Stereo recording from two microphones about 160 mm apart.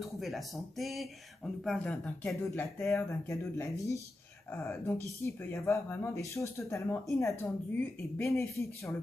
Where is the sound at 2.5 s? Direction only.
20° left (ahead or behind).